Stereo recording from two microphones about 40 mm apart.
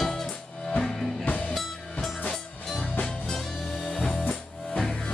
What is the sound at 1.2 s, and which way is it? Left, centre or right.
Music, left.